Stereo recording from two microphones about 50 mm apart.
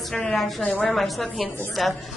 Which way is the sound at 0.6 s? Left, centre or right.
Left.